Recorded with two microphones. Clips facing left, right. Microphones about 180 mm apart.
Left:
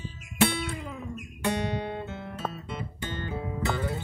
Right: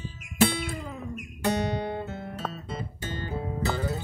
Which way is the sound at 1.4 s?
40° right (ahead or behind).